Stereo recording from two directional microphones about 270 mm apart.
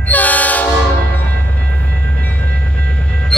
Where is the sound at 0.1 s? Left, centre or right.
Centre.